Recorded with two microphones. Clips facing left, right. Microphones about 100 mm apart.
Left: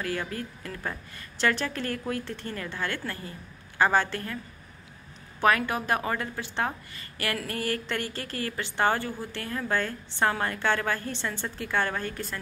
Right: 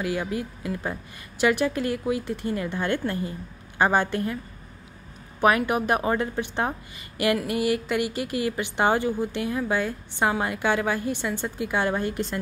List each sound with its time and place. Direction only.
0.0 s a woman's voice: 15° right (ahead or behind)
5.4 s a woman's voice: 15° right (ahead or behind)